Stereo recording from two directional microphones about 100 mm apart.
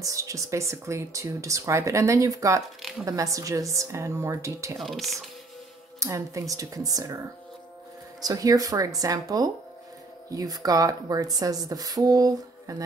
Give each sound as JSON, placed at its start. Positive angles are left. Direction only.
{"t": 0.0, "sound": "speech", "side_deg": -35}
{"t": 4.7, "sound": "speech", "side_deg": 0}
{"t": 5.9, "sound": "speech", "side_deg": -30}
{"t": 8.2, "sound": "speech", "side_deg": -35}